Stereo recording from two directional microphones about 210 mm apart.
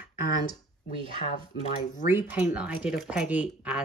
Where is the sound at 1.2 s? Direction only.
30° left (ahead or behind).